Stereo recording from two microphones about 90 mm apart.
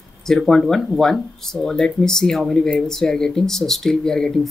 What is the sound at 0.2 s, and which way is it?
Speech, 5° left (ahead or behind).